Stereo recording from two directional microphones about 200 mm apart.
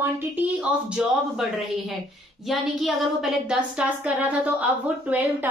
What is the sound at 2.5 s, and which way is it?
A woman's voice, centre (ahead or behind).